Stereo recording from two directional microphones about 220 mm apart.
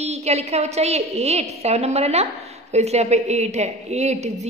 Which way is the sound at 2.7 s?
30° right (ahead or behind).